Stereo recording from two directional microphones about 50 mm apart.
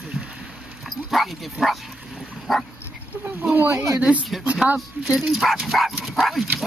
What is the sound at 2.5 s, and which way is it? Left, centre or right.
Speech, centre.